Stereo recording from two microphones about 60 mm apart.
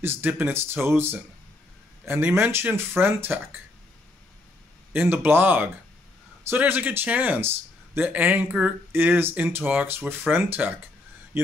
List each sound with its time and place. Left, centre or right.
0.0 s speech: right
5.1 s speech: right